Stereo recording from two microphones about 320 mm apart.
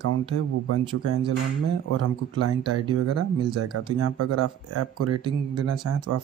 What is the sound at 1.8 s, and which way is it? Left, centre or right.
Speech, right.